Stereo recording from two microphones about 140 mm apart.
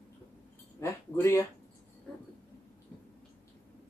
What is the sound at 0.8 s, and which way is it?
Speech, 20° left (ahead or behind).